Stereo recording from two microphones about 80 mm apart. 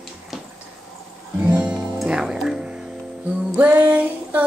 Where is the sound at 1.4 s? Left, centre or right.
Centre.